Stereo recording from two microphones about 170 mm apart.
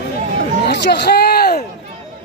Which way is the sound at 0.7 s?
80° left.